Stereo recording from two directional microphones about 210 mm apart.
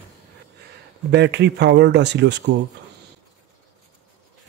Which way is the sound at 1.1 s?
55° right (ahead or behind).